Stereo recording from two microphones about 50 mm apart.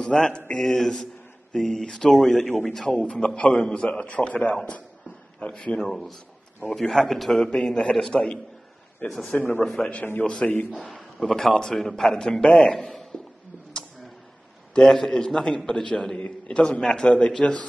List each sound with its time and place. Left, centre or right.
0.0 s a man's voice: centre
5.8 s a man's voice: centre
7.5 s a man's voice: centre
9.0 s speech: centre
9.8 s a man's voice: left
10.8 s a man's voice: centre
14.7 s a man's voice: centre